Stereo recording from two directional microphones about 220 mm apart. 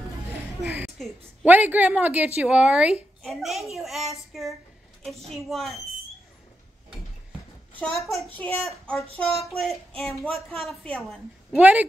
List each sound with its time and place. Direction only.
0.6 s a woman's voice: 10° right (ahead or behind)
8.2 s a woman's voice: 5° left (ahead or behind)